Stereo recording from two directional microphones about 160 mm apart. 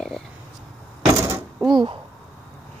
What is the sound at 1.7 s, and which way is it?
Speech, 30° right (ahead or behind).